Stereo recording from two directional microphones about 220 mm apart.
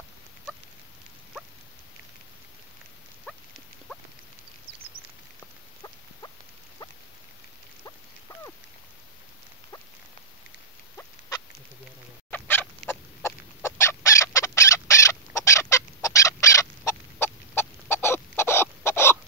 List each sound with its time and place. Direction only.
11.0 s rodents: 15° left (ahead or behind)
12.3 s chicken: 10° left (ahead or behind)